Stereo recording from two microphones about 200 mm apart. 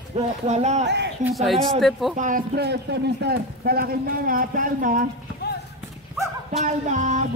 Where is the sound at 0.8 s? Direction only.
60° right (ahead or behind).